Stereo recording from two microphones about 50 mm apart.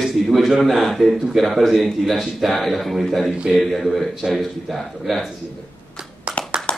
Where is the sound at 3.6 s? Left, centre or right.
Centre.